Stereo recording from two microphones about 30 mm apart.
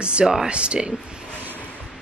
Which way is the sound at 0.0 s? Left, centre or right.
Right.